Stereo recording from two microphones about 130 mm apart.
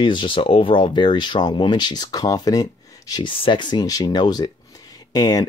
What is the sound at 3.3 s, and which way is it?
Speech, 40° left (ahead or behind).